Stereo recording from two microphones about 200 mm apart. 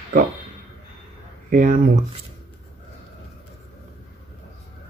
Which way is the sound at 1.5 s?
45° right (ahead or behind).